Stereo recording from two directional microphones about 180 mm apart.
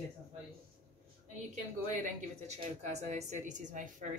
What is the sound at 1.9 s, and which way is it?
Speech, 40° right (ahead or behind).